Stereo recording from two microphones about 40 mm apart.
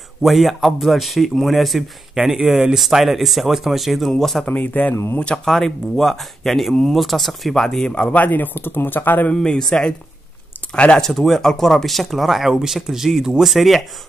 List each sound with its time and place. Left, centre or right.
0.2 s speech: centre
4.1 s speech: centre
4.5 s speech: left
4.9 s speech: left
5.4 s speech: centre
7.8 s speech: left
8.1 s speech: left
9.3 s speech: left
11.0 s speech: centre